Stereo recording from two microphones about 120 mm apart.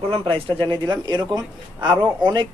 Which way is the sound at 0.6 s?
40° right (ahead or behind).